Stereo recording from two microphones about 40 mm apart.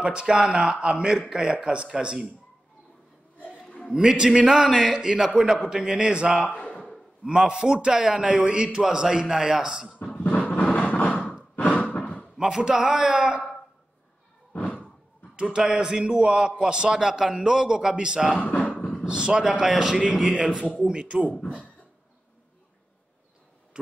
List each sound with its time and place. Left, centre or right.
0.0 s a man's voice: right
3.6 s a sound: centre
3.9 s a man's voice: centre
6.3 s a man's voice: centre
6.6 s a sound: left
7.2 s a man's voice: centre
10.0 s music: left
10.9 s a sound: left
12.4 s a man's voice: centre
14.5 s slam: left
15.5 s a man's voice: centre
21.3 s speech: left